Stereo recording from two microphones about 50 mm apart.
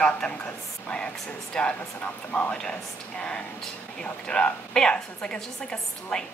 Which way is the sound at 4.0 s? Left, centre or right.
Centre.